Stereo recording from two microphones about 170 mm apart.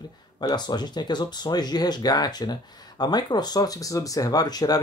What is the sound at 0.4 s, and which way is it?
Speech, 25° left (ahead or behind).